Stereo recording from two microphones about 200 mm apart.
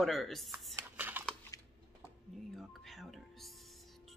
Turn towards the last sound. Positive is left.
turn(degrees=0)  # may be behind; listen again after turning